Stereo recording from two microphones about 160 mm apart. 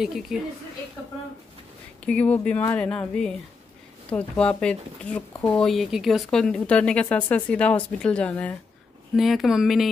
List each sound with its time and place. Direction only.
0.0 s speech: centre (ahead or behind)
2.0 s speech: 10° left (ahead or behind)